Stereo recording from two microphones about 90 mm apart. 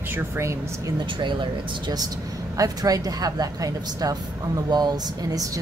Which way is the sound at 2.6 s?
40° right (ahead or behind).